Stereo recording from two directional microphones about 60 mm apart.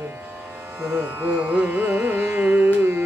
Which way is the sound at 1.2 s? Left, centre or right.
Right.